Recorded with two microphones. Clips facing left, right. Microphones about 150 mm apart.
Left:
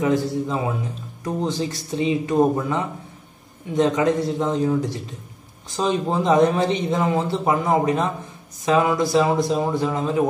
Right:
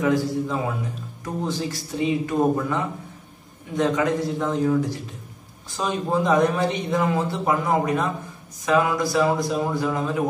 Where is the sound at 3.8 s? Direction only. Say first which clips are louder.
Left 3 dB; 20° left (ahead or behind).